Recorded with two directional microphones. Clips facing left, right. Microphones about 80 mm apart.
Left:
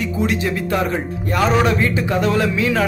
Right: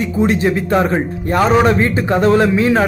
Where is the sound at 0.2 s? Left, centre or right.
Right.